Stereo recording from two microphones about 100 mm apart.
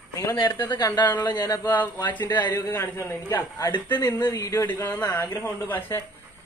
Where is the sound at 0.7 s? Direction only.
45° left (ahead or behind).